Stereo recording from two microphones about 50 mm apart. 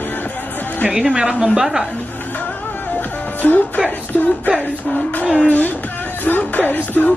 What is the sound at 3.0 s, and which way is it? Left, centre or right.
Music, left.